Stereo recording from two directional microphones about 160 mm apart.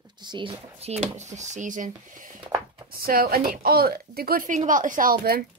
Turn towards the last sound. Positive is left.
turn(degrees=-70)  # may be behind; listen again after turning